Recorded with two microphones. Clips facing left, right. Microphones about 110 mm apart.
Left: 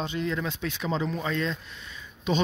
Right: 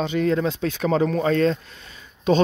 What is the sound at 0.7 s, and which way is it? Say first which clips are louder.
Speech: right 9 dB; 50° right (ahead or behind).